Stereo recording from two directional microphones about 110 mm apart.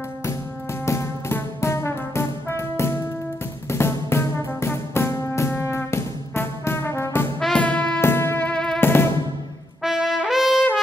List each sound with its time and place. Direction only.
0.8 s music: 25° left (ahead or behind)
7.3 s music: 5° left (ahead or behind)
8.5 s music: 10° left (ahead or behind)
8.8 s music: 20° left (ahead or behind)
9.8 s trumpet: 5° right (ahead or behind)